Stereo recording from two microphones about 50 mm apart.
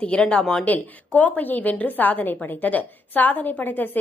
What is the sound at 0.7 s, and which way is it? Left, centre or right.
A woman's voice, left.